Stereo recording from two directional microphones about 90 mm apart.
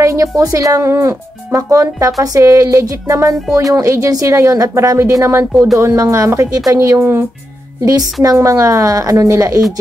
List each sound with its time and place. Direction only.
0.0 s a woman's voice: 40° right (ahead or behind)
7.8 s speech: 40° right (ahead or behind)